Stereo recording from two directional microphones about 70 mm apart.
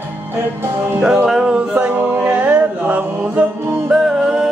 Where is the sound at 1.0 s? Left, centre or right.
Centre.